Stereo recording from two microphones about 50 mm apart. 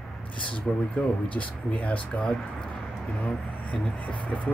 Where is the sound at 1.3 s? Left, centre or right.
Left.